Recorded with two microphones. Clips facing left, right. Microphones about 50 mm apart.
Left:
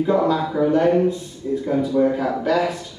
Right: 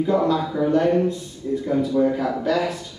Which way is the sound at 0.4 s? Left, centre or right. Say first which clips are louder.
Left 3 dB; left.